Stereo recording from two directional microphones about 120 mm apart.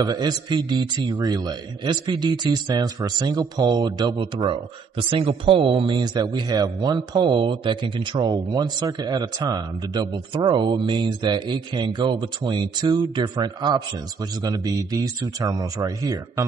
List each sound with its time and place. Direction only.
0.0 s speech: 35° right (ahead or behind)